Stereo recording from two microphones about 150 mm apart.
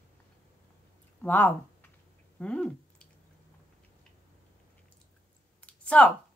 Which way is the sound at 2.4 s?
5° left (ahead or behind).